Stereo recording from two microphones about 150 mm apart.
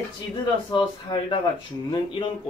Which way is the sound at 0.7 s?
35° left (ahead or behind).